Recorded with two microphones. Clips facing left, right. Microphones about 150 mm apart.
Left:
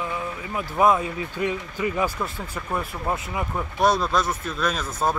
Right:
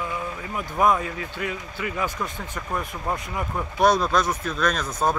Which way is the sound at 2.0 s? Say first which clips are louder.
Left 2 dB; 5° left (ahead or behind).